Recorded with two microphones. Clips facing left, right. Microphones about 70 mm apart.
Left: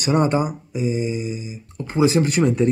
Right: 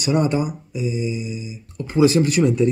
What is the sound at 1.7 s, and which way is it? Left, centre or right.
Speech, left.